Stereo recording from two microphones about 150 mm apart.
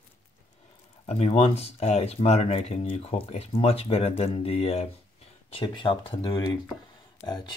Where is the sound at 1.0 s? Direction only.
45° left (ahead or behind).